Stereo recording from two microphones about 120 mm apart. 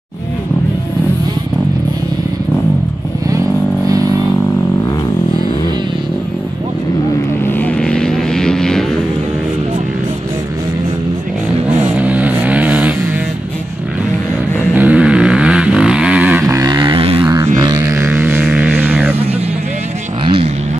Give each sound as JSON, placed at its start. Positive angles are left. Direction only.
{"t": 7.4, "sound": "vehicle", "side_deg": 15}
{"t": 12.0, "sound": "vehicle", "side_deg": -10}
{"t": 14.7, "sound": "vehicle", "side_deg": -10}
{"t": 16.4, "sound": "a sound", "side_deg": -30}
{"t": 17.6, "sound": "music", "side_deg": -35}
{"t": 17.9, "sound": "vehicle", "side_deg": -20}
{"t": 18.4, "sound": "music", "side_deg": -10}
{"t": 20.2, "sound": "vehicle", "side_deg": -50}